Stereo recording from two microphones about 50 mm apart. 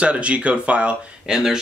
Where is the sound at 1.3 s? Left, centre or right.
Centre.